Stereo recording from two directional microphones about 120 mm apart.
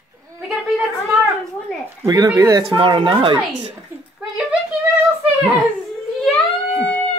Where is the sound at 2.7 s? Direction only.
45° right (ahead or behind).